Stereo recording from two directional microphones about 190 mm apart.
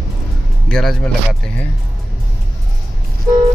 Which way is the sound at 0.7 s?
5° left (ahead or behind).